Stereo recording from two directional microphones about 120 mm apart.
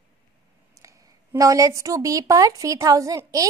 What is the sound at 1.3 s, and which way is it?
A woman's voice, 30° right (ahead or behind).